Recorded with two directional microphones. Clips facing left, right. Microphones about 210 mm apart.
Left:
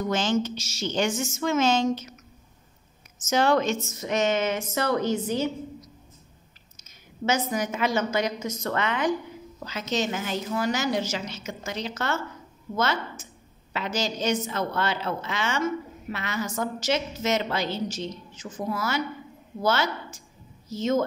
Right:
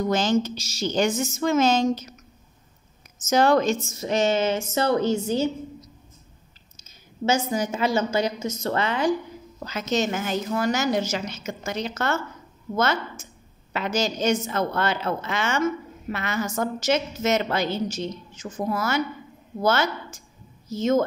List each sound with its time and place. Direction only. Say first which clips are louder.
0.0 s speech: right 3 dB; 40° right (ahead or behind)
3.3 s speech: right 3 dB; 40° right (ahead or behind)
7.2 s speech: right 2 dB; 30° right (ahead or behind)
9.6 s a woman's voice: right 3 dB; 45° right (ahead or behind)